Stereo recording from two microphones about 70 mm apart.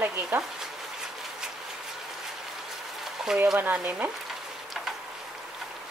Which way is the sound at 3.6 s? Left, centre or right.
Right.